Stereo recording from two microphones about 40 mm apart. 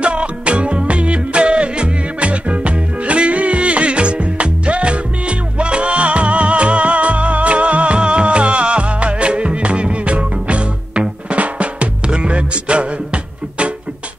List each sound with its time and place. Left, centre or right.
0.0 s music: right